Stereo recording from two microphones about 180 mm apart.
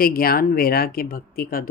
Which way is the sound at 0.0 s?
55° left (ahead or behind).